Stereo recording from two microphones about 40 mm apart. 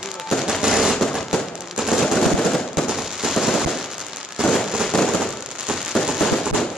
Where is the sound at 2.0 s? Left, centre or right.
Centre.